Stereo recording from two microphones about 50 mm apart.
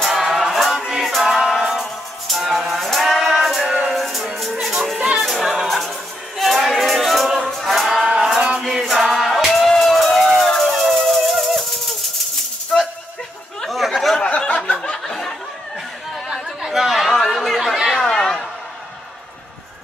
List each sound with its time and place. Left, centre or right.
0.0 s music: centre
4.9 s music: centre
5.2 s music: centre
7.4 s music: centre
7.7 s a sound: centre
8.2 s music: centre
9.5 s a sound: centre
12.7 s music: centre
13.6 s chatter: centre
14.2 s a sound: centre
16.6 s chatter: centre